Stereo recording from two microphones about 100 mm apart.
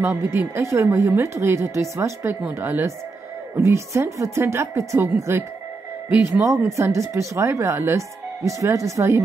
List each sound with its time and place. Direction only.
0.0 s a woman's voice: 25° right (ahead or behind)